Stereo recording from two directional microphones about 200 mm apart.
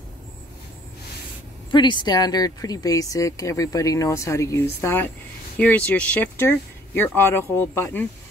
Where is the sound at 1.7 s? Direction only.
25° left (ahead or behind).